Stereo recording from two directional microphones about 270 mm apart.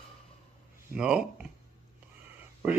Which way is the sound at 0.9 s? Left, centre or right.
Centre.